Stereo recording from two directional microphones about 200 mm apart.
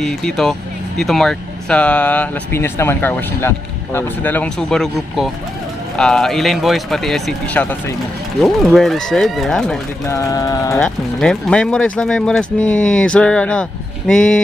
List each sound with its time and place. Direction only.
0.0 s speech: centre (ahead or behind)
10.1 s speech: 15° left (ahead or behind)
10.8 s speech: 5° left (ahead or behind)